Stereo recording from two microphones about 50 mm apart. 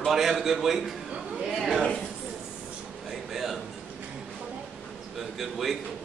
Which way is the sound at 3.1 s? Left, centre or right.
Centre.